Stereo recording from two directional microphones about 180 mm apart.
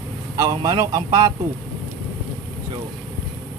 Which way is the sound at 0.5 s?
20° right (ahead or behind).